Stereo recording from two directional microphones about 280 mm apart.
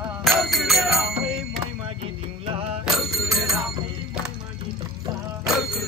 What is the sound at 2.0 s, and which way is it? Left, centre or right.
Music, right.